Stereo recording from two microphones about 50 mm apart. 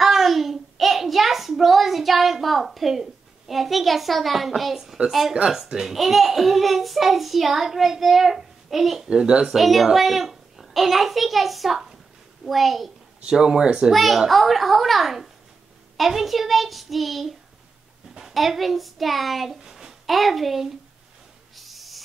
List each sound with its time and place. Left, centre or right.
0.0 s child singing: centre
5.5 s a child's voice: centre
9.1 s speech: centre
9.6 s a child's voice: centre
13.3 s speech: centre
13.9 s a child's voice: centre
21.5 s owl: centre